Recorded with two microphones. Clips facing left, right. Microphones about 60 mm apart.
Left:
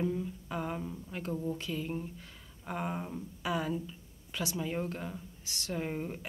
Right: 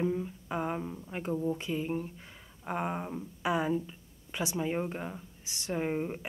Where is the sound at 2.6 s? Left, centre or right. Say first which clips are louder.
Right 3 dB; right.